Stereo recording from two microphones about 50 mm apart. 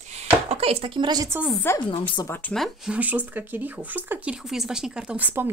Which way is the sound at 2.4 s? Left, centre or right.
Left.